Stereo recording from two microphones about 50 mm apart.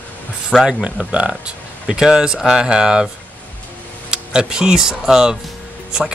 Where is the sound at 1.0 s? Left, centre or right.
Right.